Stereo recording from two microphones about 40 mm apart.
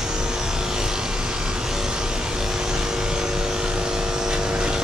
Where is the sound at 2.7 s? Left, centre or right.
Centre.